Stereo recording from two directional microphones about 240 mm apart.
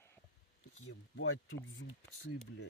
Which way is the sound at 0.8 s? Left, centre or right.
Left.